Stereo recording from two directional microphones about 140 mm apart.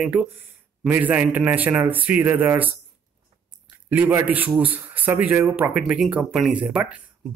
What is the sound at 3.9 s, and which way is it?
A man's voice, 15° right (ahead or behind).